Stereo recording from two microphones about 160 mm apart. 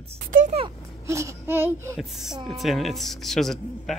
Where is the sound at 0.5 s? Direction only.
35° right (ahead or behind).